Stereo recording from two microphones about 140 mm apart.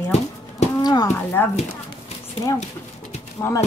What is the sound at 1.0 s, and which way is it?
Speech, 15° left (ahead or behind).